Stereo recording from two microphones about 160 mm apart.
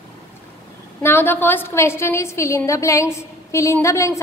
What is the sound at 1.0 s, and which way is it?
A woman's voice, 15° left (ahead or behind).